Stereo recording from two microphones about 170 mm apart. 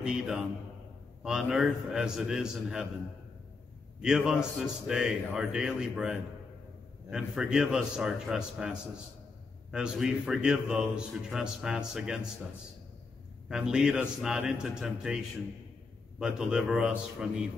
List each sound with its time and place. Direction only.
0.0 s a man's voice: 5° right (ahead or behind)
4.0 s a man's voice: 5° right (ahead or behind)
13.5 s a man's voice: 5° right (ahead or behind)
16.2 s a man's voice: 5° right (ahead or behind)